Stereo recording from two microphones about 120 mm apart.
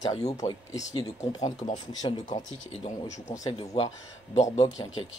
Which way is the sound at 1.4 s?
75° left (ahead or behind).